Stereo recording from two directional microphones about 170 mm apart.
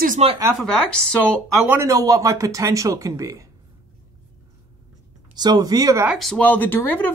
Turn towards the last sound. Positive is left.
turn(degrees=10)  # may be behind; listen again after turning